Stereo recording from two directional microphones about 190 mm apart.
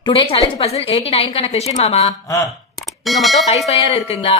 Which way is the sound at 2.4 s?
Centre (ahead or behind).